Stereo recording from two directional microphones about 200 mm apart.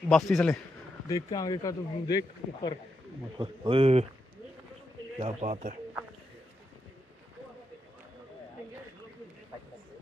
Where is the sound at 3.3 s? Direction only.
25° right (ahead or behind).